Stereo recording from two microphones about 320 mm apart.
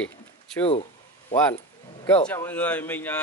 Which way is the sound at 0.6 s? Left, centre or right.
Centre.